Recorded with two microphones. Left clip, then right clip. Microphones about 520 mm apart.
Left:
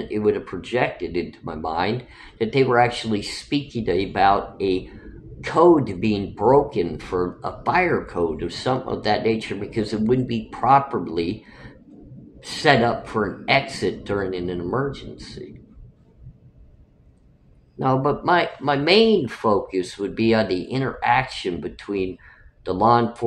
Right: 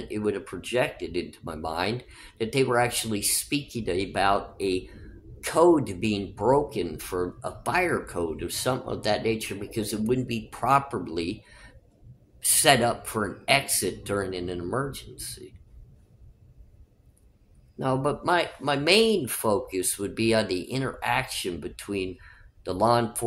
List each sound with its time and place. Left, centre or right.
0.1 s speech: right
17.7 s speech: right